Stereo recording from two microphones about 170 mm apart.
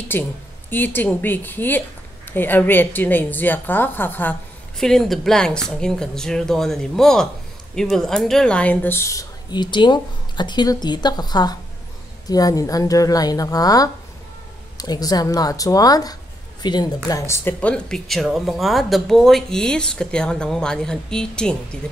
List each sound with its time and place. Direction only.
0.1 s a woman's voice: 10° left (ahead or behind)